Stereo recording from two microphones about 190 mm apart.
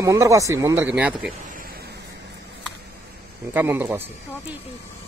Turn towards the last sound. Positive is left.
turn(degrees=-10)  # may be behind; listen again after turning